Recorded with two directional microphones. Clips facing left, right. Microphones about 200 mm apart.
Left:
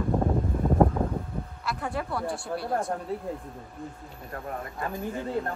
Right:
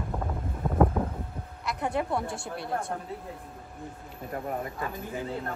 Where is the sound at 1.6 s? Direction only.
20° right (ahead or behind).